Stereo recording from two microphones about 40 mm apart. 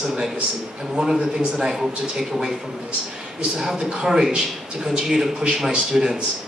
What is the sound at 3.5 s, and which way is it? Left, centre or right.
Speech, centre.